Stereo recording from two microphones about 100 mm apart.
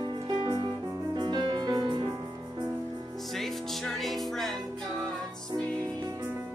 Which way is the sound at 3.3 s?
Centre (ahead or behind).